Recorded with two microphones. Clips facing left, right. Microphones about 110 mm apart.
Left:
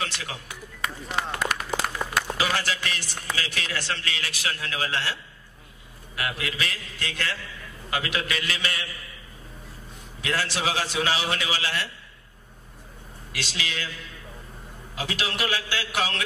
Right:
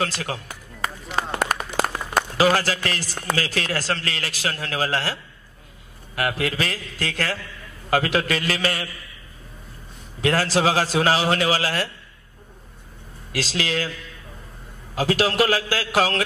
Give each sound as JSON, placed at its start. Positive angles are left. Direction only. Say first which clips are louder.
{"t": 0.0, "sound": "a man's voice", "louder": "right 7 dB", "side_deg": -40}
{"t": 10.2, "sound": "a man's voice", "louder": "right 8 dB", "side_deg": -40}
{"t": 13.3, "sound": "a man's voice", "louder": "right 8 dB", "side_deg": -40}
{"t": 15.0, "sound": "a man's voice", "louder": "right 10 dB", "side_deg": -40}